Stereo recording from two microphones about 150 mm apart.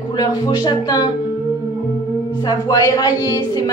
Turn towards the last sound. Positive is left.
turn(degrees=25)  # may be behind; listen again after turning